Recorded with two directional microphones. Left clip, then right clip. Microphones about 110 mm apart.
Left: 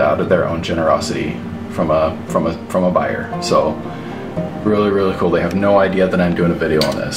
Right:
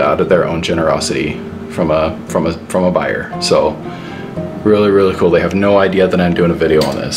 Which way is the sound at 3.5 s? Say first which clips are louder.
Right 3 dB; 90° right.